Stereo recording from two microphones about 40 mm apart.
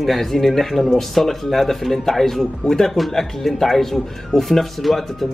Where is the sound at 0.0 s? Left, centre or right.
Centre.